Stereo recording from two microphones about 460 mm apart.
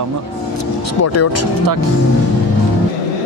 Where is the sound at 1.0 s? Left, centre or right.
Left.